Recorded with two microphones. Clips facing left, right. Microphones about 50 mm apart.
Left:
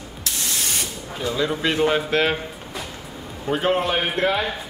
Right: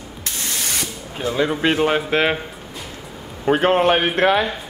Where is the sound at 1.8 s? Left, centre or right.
Right.